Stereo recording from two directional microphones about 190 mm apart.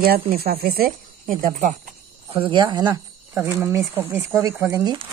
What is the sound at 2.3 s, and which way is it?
Speech, 25° right (ahead or behind).